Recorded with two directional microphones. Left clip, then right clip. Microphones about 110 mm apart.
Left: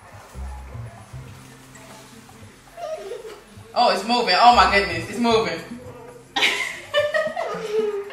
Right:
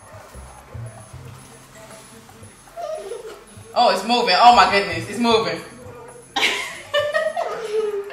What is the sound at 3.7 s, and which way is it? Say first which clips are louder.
A man's voice: right 2 dB; 15° right (ahead or behind).